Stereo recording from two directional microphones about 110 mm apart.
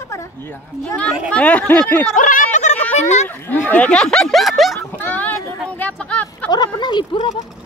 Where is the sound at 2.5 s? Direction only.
90° left.